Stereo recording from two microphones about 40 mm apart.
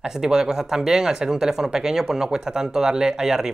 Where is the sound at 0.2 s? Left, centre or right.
Centre.